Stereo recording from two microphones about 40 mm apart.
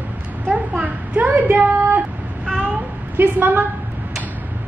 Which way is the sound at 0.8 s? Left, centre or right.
Right.